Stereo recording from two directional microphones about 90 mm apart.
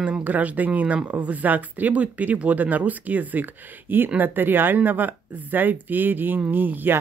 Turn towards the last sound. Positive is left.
turn(degrees=-20)  # may be behind; listen again after turning